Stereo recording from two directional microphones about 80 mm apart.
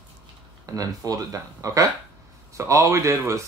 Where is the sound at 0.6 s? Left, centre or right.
Right.